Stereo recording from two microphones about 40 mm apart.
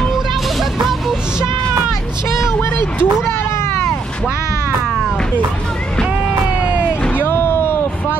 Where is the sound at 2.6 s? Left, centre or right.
Left.